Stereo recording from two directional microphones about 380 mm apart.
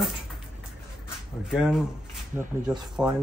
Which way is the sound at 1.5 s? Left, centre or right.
Centre.